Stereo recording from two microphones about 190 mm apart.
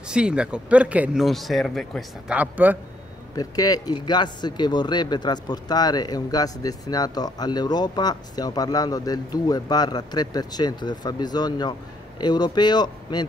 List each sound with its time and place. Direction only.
0.1 s speech: 5° right (ahead or behind)
3.3 s speech: 20° left (ahead or behind)